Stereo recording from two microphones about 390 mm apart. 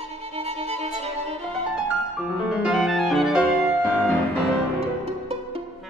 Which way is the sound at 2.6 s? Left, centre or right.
Centre.